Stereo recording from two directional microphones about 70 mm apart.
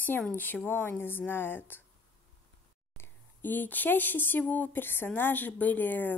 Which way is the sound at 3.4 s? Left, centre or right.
Left.